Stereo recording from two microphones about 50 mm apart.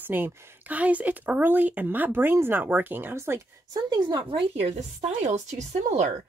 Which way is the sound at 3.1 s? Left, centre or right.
Right.